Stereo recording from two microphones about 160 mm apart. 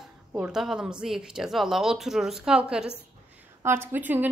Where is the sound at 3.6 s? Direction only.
15° right (ahead or behind).